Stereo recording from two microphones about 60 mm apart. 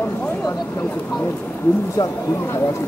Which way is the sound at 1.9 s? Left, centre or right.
Left.